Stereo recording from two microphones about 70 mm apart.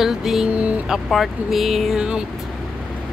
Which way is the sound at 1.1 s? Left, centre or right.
Centre.